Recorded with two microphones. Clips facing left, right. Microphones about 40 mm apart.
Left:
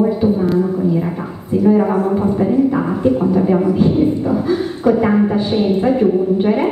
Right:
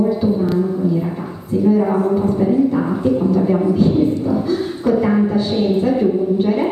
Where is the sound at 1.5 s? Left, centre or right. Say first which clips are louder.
Left 2 dB; left.